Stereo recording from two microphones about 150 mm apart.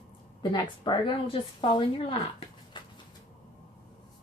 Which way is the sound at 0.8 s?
35° left (ahead or behind).